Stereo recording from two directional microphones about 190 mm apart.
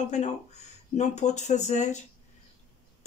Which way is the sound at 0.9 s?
35° left (ahead or behind).